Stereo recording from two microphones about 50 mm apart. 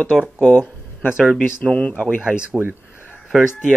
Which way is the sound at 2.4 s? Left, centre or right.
Right.